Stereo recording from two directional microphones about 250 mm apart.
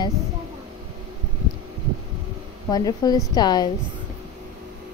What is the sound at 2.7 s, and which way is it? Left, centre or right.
Speech, centre.